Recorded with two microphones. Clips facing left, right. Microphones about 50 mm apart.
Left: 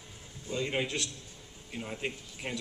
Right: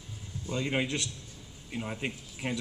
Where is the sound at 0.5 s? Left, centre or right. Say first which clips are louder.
Right 1 dB; centre.